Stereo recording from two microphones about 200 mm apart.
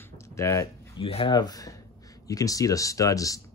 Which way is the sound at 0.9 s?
25° left (ahead or behind).